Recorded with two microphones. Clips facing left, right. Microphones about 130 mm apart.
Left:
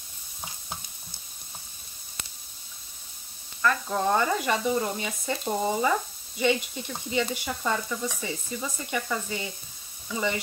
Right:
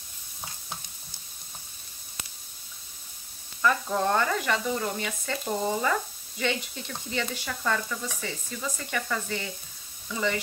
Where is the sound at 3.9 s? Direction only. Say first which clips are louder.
Left 2 dB; 5° left (ahead or behind).